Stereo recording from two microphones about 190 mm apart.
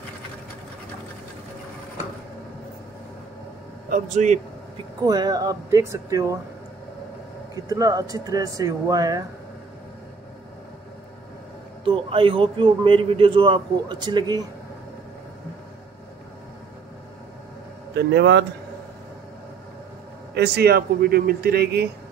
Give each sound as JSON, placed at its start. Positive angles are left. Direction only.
{"t": 3.9, "sound": "speech", "side_deg": -40}
{"t": 5.0, "sound": "a man's voice", "side_deg": -20}
{"t": 7.5, "sound": "a man's voice", "side_deg": -20}
{"t": 11.8, "sound": "a man's voice", "side_deg": -25}
{"t": 17.9, "sound": "speech", "side_deg": -65}
{"t": 20.3, "sound": "a man's voice", "side_deg": -60}